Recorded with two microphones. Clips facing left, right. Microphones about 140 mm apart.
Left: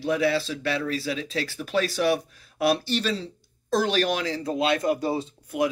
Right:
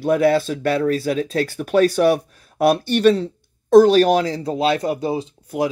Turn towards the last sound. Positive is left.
turn(degrees=-30)  # may be behind; listen again after turning